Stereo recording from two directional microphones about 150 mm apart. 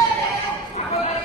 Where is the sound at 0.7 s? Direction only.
45° left (ahead or behind).